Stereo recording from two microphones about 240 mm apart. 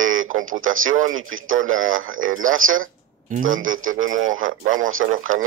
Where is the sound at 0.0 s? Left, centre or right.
Right.